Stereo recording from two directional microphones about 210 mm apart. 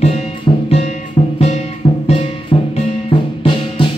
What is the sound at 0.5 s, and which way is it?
Music, 20° left (ahead or behind).